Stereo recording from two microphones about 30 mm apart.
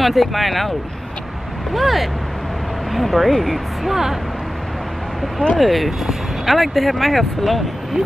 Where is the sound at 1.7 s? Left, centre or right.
Centre.